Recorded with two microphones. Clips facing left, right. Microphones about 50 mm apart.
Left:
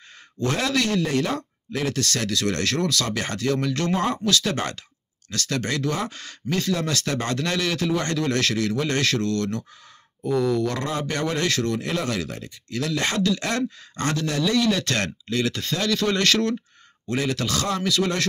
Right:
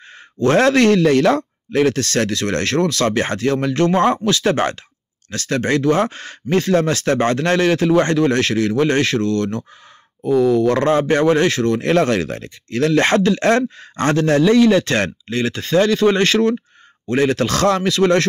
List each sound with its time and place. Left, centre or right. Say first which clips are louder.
0.4 s speech: right 10 dB; right
3.9 s speech: right 9 dB; right
4.2 s speech: right 7 dB; right
7.2 s speech: right 9 dB; right
10.7 s speech: right 12 dB; right
11.8 s speech: right 10 dB; right
17.1 s speech: right 8 dB; right